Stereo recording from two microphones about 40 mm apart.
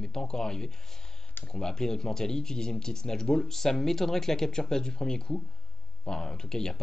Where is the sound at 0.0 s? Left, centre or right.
Centre.